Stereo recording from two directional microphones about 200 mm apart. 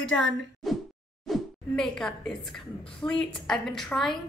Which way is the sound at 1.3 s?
Centre (ahead or behind).